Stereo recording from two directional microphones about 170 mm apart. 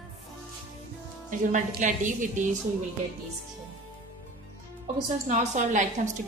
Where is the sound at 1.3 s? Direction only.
50° right (ahead or behind).